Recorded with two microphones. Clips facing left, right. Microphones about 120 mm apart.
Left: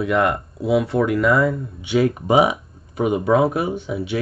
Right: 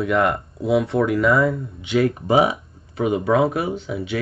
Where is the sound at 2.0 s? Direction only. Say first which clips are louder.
Left 1 dB; 15° left (ahead or behind).